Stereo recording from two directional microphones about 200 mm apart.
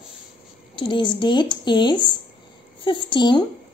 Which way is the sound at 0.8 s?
25° left (ahead or behind).